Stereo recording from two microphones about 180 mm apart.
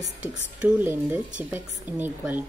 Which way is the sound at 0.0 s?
45° right (ahead or behind).